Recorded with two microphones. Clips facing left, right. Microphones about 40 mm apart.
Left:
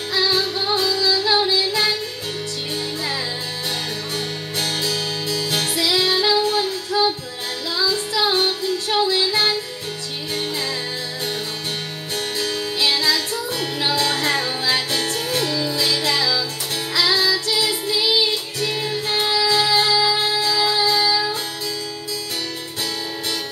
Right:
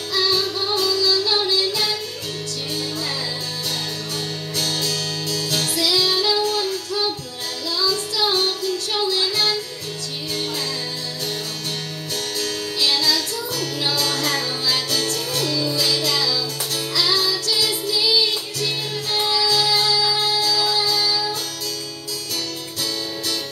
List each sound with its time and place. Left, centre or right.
0.1 s music: left
4.6 s music: left
12.4 s music: left